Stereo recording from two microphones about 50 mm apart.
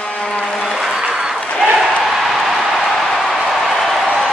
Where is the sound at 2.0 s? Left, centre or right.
Centre.